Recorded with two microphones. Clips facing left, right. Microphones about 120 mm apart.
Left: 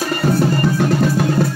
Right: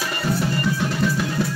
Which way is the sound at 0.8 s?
50° left (ahead or behind).